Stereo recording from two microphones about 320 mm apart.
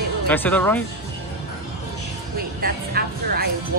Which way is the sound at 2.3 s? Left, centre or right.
Right.